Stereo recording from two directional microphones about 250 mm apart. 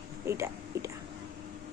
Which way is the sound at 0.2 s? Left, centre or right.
Centre.